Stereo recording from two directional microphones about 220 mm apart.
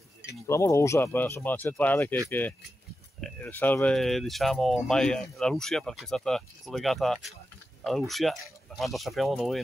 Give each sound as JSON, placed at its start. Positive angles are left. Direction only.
{"t": 0.5, "sound": "speech", "side_deg": 15}
{"t": 3.2, "sound": "speech", "side_deg": 5}